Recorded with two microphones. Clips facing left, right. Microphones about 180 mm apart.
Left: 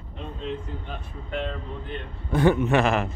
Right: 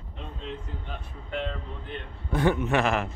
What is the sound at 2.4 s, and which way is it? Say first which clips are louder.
Speech: left 4 dB; 30° left (ahead or behind).